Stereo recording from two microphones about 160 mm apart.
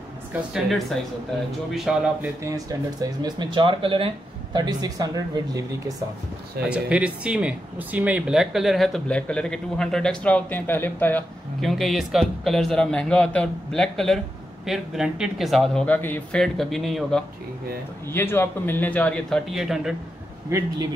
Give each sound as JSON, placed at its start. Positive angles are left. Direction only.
{"t": 0.5, "sound": "speech", "side_deg": 0}
{"t": 2.4, "sound": "speech", "side_deg": -20}
{"t": 6.6, "sound": "speech", "side_deg": -5}
{"t": 11.6, "sound": "speech", "side_deg": 0}
{"t": 18.1, "sound": "a man's voice", "side_deg": 15}
{"t": 20.4, "sound": "speech", "side_deg": -20}